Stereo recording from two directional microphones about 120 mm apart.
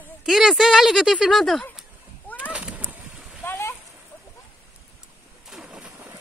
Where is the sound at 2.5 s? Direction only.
10° right (ahead or behind).